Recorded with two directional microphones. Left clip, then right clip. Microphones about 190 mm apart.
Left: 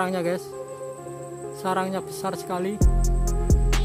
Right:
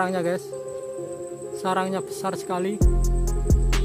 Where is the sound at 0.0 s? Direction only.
5° left (ahead or behind).